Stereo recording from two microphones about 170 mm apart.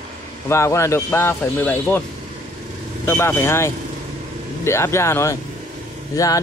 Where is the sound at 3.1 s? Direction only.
15° left (ahead or behind).